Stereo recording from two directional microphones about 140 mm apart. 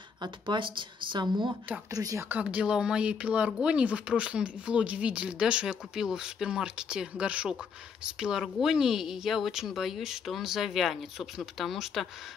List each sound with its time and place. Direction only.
0.2 s speech: 35° right (ahead or behind)
2.2 s speech: 10° right (ahead or behind)